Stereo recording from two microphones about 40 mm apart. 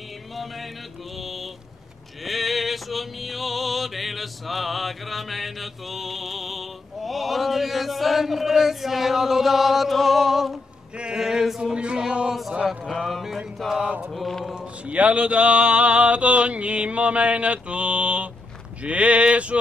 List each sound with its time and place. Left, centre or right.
1.2 s a sound: centre
2.2 s music: centre
11.1 s male singing: centre
11.7 s a sound: right
12.9 s music: centre
14.9 s mantra: right